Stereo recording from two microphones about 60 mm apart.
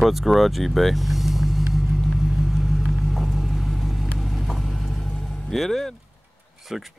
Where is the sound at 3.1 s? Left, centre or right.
Centre.